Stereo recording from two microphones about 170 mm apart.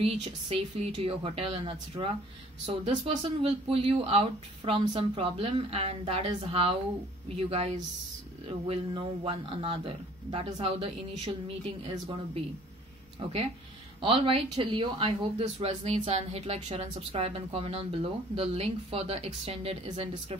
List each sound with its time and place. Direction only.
0.0 s speech: 35° right (ahead or behind)